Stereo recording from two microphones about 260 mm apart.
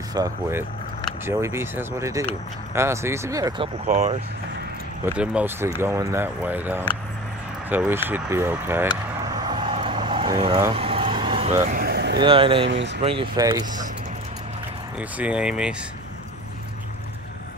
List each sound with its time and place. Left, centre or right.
0.1 s speech: centre
5.0 s speech: centre
9.3 s vehicle: centre
11.6 s a sound: right
12.2 s speech: centre
12.6 s speech: right
13.0 s speech: centre
15.0 s speech: centre